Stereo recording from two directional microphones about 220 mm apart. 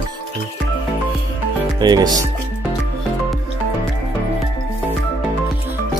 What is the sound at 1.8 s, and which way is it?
Speech, 20° right (ahead or behind).